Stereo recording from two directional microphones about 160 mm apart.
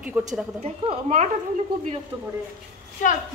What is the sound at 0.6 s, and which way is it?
Speech, 40° right (ahead or behind).